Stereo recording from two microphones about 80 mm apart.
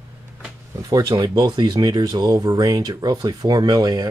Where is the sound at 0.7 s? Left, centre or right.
Right.